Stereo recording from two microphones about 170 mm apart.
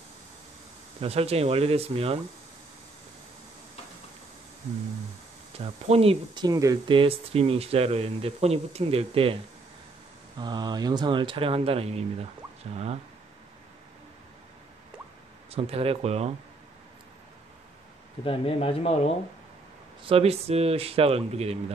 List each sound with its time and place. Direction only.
1.0 s speech: 35° right (ahead or behind)
5.6 s speech: 35° right (ahead or behind)
10.4 s speech: 25° right (ahead or behind)
15.5 s speech: 35° right (ahead or behind)
18.2 s speech: 30° left (ahead or behind)
20.0 s speech: 35° right (ahead or behind)